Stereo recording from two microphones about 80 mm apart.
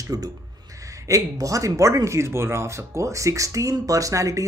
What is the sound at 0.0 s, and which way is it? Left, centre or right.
Speech, right.